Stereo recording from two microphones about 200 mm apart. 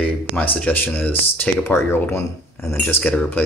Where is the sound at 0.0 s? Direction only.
5° left (ahead or behind).